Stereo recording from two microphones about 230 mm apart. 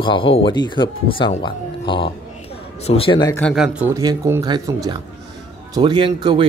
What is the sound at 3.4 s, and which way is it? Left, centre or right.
Speech, centre.